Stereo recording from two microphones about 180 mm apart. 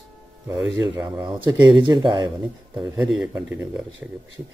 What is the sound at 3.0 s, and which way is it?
Speech, 5° right (ahead or behind).